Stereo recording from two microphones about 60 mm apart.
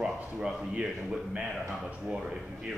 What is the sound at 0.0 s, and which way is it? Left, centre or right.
Speech, centre.